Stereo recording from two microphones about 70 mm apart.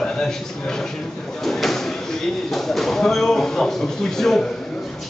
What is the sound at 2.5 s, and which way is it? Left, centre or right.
Speech, centre.